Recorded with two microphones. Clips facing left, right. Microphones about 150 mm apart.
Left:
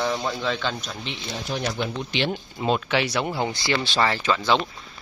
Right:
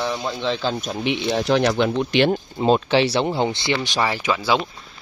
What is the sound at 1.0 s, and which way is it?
Speech, 60° right (ahead or behind).